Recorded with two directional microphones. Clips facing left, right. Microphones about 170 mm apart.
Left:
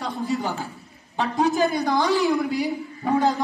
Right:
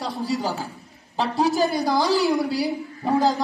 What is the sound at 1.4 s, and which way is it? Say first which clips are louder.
Speech: even; 35° right (ahead or behind).